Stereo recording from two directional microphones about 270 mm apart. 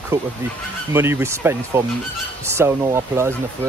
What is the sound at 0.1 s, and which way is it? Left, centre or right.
Speech, centre.